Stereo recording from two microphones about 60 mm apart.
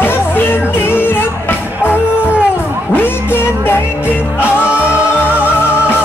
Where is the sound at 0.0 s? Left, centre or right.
Left.